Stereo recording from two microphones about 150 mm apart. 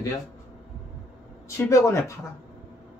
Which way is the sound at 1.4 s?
20° left (ahead or behind).